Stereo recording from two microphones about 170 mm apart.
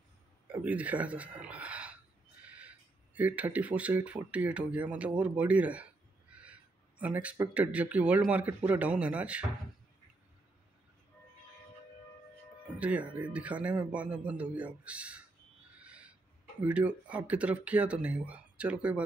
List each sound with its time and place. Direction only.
0.5 s speech: 10° right (ahead or behind)
2.4 s owl: 10° right (ahead or behind)
3.2 s speech: 10° right (ahead or behind)
12.7 s speech: 10° right (ahead or behind)
15.8 s owl: 10° right (ahead or behind)
16.6 s speech: 10° right (ahead or behind)